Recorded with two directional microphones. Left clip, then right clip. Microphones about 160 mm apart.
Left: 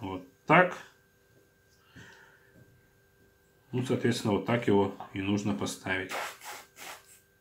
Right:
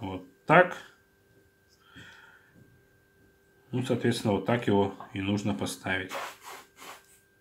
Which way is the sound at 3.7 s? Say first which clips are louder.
Right 1 dB; 35° right (ahead or behind).